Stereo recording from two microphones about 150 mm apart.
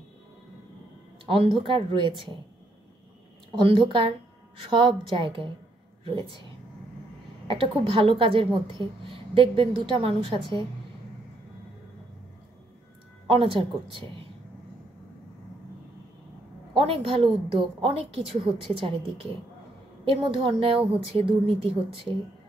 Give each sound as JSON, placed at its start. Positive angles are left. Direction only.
{"t": 1.2, "sound": "a woman's voice", "side_deg": -40}
{"t": 3.5, "sound": "a woman's voice", "side_deg": -35}
{"t": 7.4, "sound": "a woman's voice", "side_deg": -35}
{"t": 13.3, "sound": "a woman's voice", "side_deg": -35}
{"t": 16.7, "sound": "a woman's voice", "side_deg": -35}